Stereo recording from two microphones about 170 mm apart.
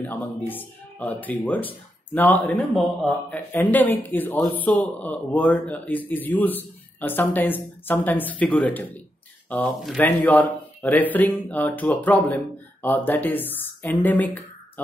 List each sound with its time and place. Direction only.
0.0 s a man's voice: 10° left (ahead or behind)